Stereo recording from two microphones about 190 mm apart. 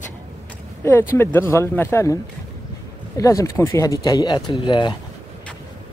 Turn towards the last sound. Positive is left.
turn(degrees=25)  # may be behind; listen again after turning